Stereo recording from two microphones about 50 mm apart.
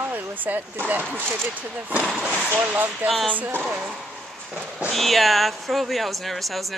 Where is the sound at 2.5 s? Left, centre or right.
Right.